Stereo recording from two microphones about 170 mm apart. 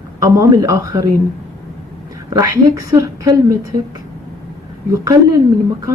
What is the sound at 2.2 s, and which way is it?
Speech, 20° right (ahead or behind).